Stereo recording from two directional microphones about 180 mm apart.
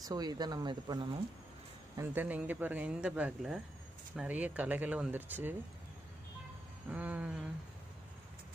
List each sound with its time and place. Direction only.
0.0 s speech: 20° right (ahead or behind)
2.0 s speech: 10° right (ahead or behind)
6.9 s speech: 5° right (ahead or behind)